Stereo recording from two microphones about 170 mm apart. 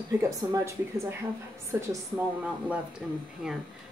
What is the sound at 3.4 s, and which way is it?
Speech, 5° right (ahead or behind).